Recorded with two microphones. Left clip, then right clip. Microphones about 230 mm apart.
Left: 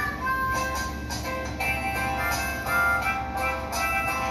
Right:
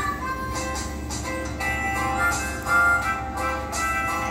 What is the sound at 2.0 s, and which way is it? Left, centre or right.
Music, left.